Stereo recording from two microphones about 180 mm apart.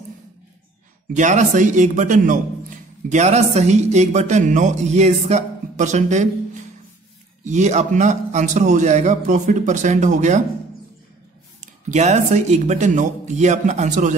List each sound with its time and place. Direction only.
1.1 s a man's voice: 40° right (ahead or behind)
11.6 s a man's voice: 40° right (ahead or behind)